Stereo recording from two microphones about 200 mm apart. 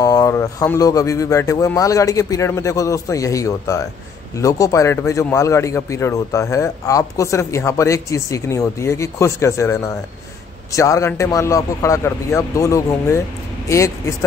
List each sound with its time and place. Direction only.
0.0 s a man's voice: 15° left (ahead or behind)